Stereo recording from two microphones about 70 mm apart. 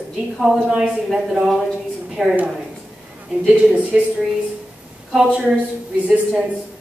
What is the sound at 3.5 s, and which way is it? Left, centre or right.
Speech, centre.